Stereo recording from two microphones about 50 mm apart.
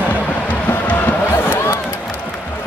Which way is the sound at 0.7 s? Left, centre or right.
Left.